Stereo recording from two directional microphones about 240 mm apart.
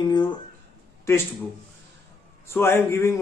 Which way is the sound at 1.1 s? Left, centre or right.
Centre.